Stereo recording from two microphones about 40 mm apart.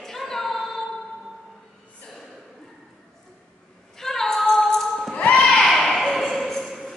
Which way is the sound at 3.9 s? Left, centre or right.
Centre.